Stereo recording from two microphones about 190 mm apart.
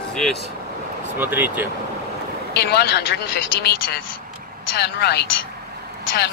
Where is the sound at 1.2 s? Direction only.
10° right (ahead or behind).